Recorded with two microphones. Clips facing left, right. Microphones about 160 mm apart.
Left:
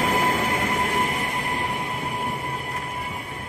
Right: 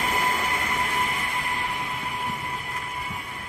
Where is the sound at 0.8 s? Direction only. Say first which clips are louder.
Left 4 dB; 50° left (ahead or behind).